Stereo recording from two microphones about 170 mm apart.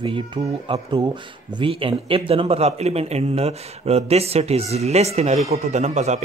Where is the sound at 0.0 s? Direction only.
30° right (ahead or behind).